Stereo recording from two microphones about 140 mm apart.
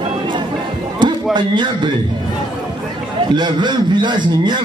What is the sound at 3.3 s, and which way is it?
Speech, 30° right (ahead or behind).